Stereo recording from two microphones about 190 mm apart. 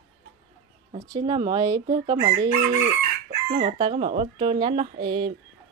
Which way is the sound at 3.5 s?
30° right (ahead or behind).